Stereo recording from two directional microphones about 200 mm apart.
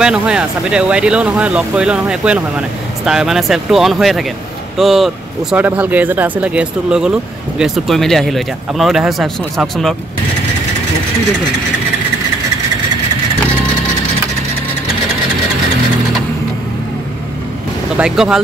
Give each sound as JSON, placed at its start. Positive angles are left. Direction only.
{"t": 0.0, "sound": "speech", "side_deg": -5}
{"t": 17.9, "sound": "speech", "side_deg": -5}